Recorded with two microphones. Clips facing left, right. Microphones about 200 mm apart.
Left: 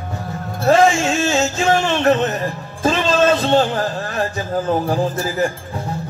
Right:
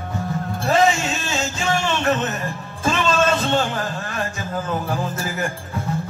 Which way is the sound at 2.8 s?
40° left (ahead or behind).